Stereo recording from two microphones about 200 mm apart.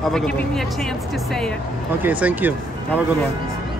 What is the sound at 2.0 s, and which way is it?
Speech, 10° right (ahead or behind).